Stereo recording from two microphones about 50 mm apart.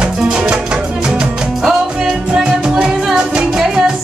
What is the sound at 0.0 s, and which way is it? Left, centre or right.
Music, centre.